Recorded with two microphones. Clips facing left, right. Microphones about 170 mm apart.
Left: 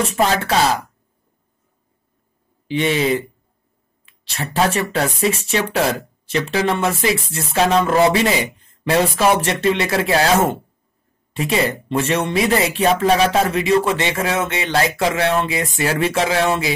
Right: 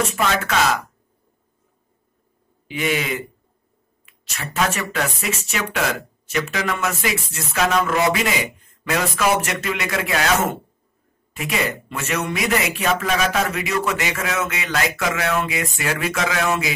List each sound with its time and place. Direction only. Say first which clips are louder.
0.0 s speech: left 3 dB; 35° left (ahead or behind)
2.7 s speech: left 6 dB; 30° left (ahead or behind)
11.3 s speech: left 5 dB; 30° left (ahead or behind)